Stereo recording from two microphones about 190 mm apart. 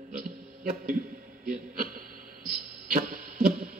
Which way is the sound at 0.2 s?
50° right (ahead or behind).